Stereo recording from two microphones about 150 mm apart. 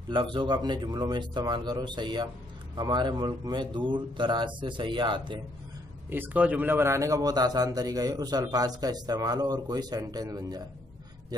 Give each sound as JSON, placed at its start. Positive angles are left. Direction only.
{"t": 0.1, "sound": "a man's voice", "side_deg": -35}
{"t": 6.0, "sound": "a man's voice", "side_deg": -15}